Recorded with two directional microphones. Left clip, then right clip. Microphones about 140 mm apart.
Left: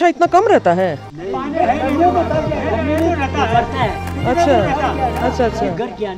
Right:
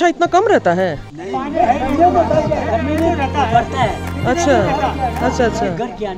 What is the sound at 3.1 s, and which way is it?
Speech, 20° left (ahead or behind).